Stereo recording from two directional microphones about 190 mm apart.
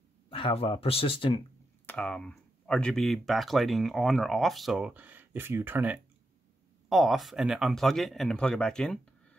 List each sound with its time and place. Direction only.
0.3 s speech: 30° left (ahead or behind)
1.9 s speech: 5° left (ahead or behind)